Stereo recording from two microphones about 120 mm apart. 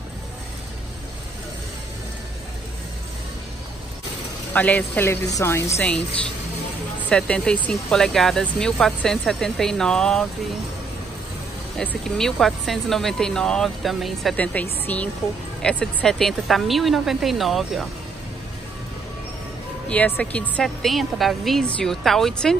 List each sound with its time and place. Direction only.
4.6 s a woman's voice: 15° left (ahead or behind)
11.8 s speech: 5° left (ahead or behind)
14.3 s a woman's voice: 10° left (ahead or behind)
19.9 s speech: 10° left (ahead or behind)